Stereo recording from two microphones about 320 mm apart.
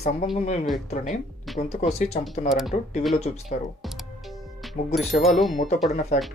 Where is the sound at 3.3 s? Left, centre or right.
Left.